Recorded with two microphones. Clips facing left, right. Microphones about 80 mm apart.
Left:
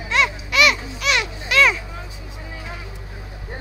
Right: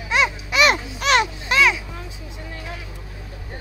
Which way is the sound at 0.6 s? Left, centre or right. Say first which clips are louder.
Right 2 dB; right.